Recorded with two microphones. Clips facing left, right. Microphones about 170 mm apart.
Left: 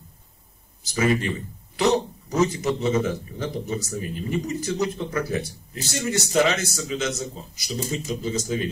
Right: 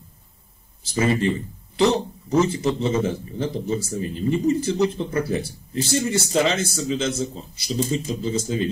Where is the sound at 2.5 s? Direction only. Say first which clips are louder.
Right 1 dB; 30° right (ahead or behind).